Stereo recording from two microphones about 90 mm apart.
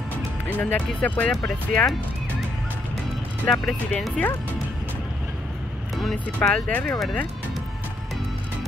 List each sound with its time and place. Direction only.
0.5 s speech: 20° left (ahead or behind)
3.4 s speech: 10° left (ahead or behind)
5.9 s speech: centre (ahead or behind)
6.7 s speech: 15° left (ahead or behind)